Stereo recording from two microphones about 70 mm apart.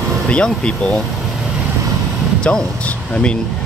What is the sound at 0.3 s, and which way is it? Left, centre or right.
Speech, centre.